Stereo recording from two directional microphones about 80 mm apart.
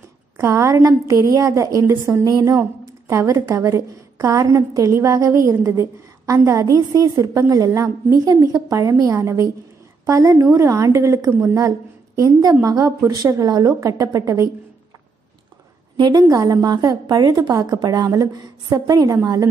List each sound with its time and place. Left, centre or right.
0.4 s a woman's voice: right
16.0 s a woman's voice: right